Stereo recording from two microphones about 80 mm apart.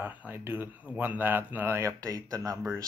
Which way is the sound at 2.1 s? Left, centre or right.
Right.